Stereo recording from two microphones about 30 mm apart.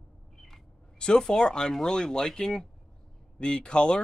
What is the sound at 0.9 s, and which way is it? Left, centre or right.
Speech, left.